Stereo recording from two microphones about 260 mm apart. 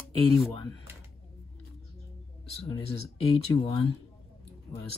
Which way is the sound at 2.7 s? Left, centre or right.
Left.